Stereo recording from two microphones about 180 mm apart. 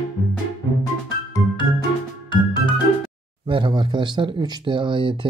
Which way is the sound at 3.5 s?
25° right (ahead or behind).